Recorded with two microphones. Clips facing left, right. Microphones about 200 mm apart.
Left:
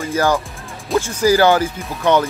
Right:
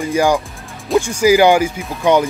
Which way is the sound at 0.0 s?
15° right (ahead or behind).